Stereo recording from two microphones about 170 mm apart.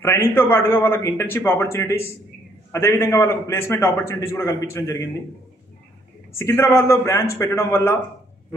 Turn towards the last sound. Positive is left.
turn(degrees=15)  # may be behind; listen again after turning